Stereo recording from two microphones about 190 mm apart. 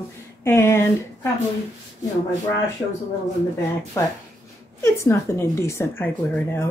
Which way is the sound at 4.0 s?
10° left (ahead or behind).